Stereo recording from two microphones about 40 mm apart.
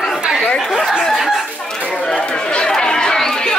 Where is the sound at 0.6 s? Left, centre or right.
Centre.